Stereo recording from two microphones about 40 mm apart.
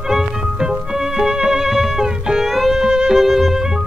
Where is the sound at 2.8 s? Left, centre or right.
Centre.